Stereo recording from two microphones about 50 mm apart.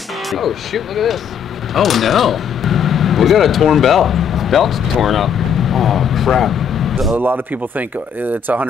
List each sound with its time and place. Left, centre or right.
0.3 s speech: centre
7.2 s speech: right